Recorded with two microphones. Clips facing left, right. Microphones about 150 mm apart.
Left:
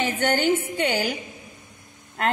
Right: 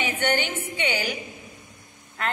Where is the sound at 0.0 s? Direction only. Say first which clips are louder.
Left 3 dB; 40° left (ahead or behind).